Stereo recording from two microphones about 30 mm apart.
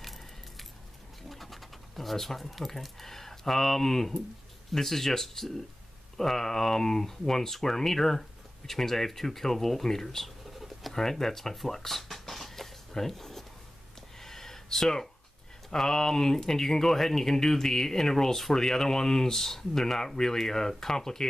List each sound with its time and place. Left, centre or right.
0.0 s keys jangling: centre
1.3 s speech: centre
10.4 s a sound: centre
10.9 s speech: centre
11.5 s a sound: centre
15.7 s speech: centre